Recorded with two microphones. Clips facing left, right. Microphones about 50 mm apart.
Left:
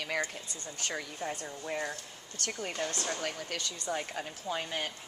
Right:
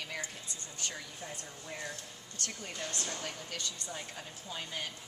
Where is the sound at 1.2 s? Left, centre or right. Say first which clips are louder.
Left 8 dB; left.